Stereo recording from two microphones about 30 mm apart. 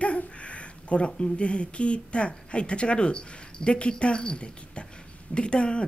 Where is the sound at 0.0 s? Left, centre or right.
Left.